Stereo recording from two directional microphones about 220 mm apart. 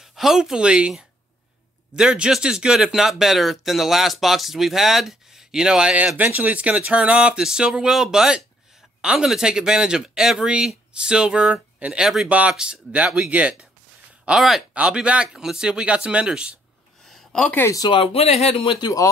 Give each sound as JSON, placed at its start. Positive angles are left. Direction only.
{"t": 0.0, "sound": "speech", "side_deg": 0}